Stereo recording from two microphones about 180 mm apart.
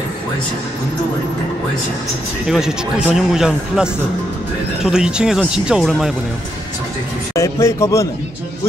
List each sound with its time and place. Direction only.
2.4 s speech: 5° right (ahead or behind)
7.3 s a man's voice: 15° left (ahead or behind)